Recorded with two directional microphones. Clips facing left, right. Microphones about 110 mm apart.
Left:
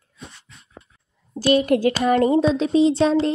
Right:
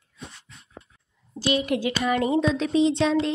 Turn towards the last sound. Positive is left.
turn(degrees=35)  # may be behind; listen again after turning